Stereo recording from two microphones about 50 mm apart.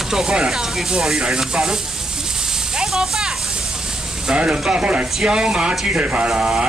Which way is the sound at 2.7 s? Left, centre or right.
Centre.